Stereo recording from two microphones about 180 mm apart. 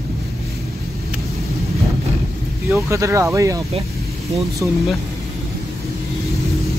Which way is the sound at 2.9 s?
15° right (ahead or behind).